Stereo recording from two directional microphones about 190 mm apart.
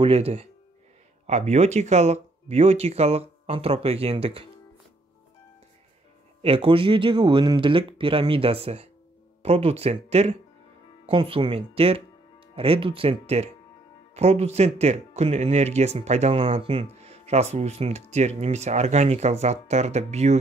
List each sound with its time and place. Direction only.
0.0 s speech: 30° right (ahead or behind)
6.4 s speech: 30° right (ahead or behind)